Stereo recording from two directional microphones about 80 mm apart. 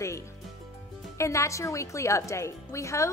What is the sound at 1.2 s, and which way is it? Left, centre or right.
A woman's voice, left.